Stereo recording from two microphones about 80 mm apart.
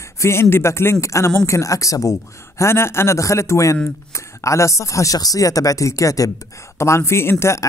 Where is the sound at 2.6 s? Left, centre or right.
Left.